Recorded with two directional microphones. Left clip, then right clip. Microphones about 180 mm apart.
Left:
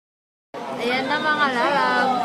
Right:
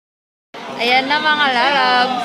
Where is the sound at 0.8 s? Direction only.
20° right (ahead or behind).